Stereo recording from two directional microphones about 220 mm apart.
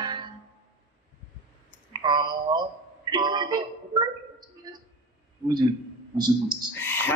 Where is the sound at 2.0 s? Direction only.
20° right (ahead or behind).